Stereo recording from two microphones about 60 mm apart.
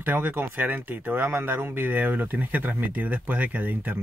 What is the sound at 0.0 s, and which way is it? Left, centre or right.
Speech, right.